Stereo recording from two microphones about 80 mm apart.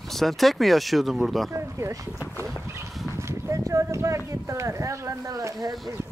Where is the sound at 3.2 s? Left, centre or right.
Right.